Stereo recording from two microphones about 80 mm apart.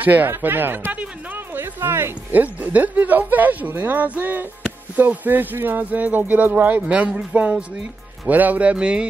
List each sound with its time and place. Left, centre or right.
0.0 s speech: right